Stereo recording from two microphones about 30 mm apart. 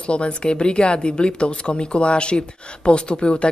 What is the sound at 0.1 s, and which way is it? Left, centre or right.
A woman's voice, left.